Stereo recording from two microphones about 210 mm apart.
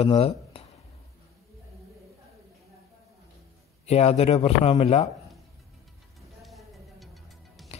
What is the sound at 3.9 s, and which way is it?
Speech, 30° left (ahead or behind).